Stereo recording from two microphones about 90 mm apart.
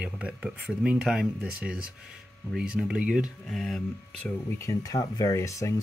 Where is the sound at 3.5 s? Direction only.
5° left (ahead or behind).